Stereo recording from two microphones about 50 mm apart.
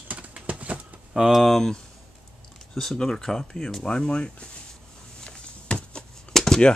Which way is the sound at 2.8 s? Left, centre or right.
Centre.